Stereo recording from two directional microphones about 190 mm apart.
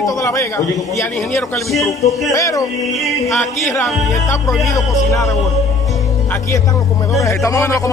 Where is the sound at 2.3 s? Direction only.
15° left (ahead or behind).